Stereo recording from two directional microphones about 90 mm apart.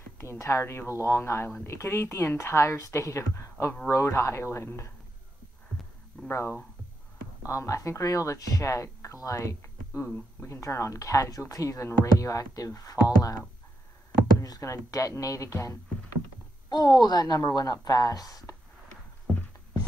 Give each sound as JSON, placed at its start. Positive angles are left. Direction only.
{"t": 0.2, "sound": "speech", "side_deg": 30}
{"t": 6.2, "sound": "speech", "side_deg": 25}
{"t": 14.4, "sound": "speech", "side_deg": 40}
{"t": 16.6, "sound": "a woman's voice", "side_deg": 45}